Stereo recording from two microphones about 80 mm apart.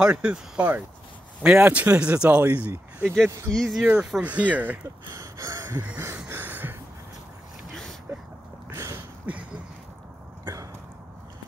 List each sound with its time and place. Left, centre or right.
0.0 s speech: centre
3.5 s speech: centre
4.2 s speech: centre
5.1 s gasp: right
6.2 s a sound: right
9.2 s a sound: centre